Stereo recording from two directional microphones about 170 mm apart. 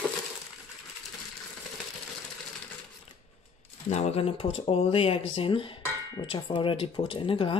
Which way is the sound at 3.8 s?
40° left (ahead or behind).